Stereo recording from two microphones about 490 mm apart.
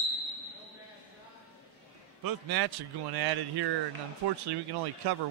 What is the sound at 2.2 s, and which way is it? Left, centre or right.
A man's voice, right.